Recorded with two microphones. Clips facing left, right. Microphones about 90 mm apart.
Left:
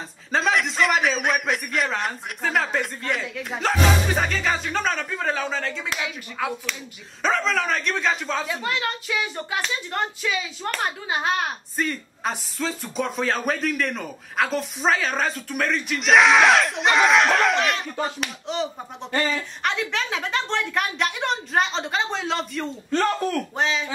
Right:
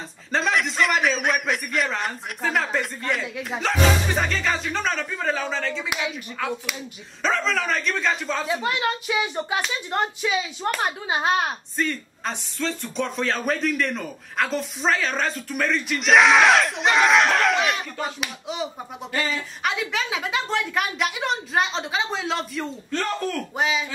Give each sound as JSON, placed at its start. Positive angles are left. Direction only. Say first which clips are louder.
{"t": 0.3, "sound": "speech", "louder": "left 1 dB", "side_deg": 0}
{"t": 5.9, "sound": "speech", "louder": "right 1 dB", "side_deg": -15}
{"t": 6.4, "sound": "speech", "louder": "left 1 dB", "side_deg": 5}
{"t": 8.5, "sound": "a child's voice", "louder": "right 3 dB", "side_deg": -20}
{"t": 11.7, "sound": "speech", "louder": "even", "side_deg": 5}
{"t": 22.8, "sound": "speech", "louder": "left 5 dB", "side_deg": 20}
{"t": 23.6, "sound": "speech", "louder": "right 2 dB", "side_deg": -10}